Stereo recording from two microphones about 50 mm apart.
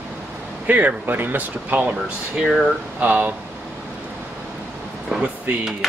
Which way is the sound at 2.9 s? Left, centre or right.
Right.